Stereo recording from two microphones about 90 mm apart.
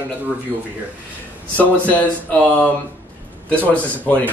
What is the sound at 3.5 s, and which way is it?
Speech, 15° left (ahead or behind).